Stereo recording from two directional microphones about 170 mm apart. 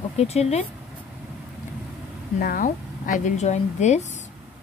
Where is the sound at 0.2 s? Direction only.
40° left (ahead or behind).